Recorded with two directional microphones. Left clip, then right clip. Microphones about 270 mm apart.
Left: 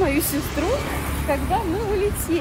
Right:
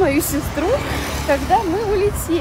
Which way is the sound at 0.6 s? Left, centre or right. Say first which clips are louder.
Right 5 dB; right.